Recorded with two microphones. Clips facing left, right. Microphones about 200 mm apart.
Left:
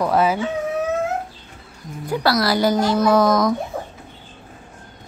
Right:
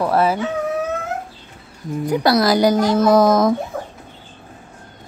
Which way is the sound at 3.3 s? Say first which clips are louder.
Right 3 dB; 25° right (ahead or behind).